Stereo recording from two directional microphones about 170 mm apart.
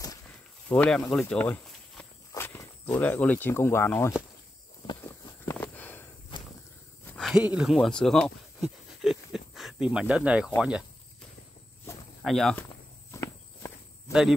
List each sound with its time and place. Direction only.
0.7 s speech: 5° left (ahead or behind)
5.0 s a sound: 15° left (ahead or behind)
7.1 s a sound: centre (ahead or behind)
7.4 s speech: 5° right (ahead or behind)
12.2 s speech: centre (ahead or behind)
13.1 s walk: 15° left (ahead or behind)